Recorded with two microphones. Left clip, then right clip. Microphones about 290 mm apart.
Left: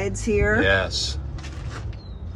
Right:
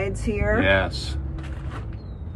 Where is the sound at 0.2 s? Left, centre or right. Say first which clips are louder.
Left 4 dB; left.